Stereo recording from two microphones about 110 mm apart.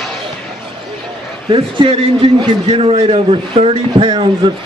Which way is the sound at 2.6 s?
60° right (ahead or behind).